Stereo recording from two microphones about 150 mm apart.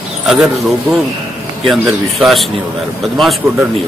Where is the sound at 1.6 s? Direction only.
Centre (ahead or behind).